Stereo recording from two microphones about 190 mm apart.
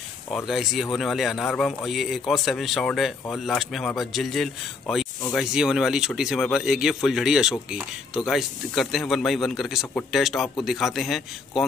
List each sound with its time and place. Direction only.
0.5 s speech: centre (ahead or behind)